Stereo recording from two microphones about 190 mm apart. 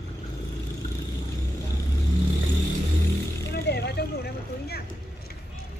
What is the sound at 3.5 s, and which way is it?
Vehicle, 60° left (ahead or behind).